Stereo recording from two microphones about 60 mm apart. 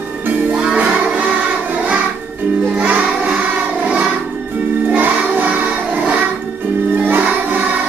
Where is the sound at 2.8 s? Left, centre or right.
Right.